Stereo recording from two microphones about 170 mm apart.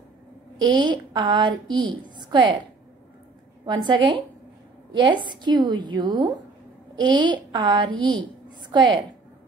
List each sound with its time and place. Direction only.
0.7 s a woman's voice: 25° right (ahead or behind)
3.6 s a woman's voice: 25° right (ahead or behind)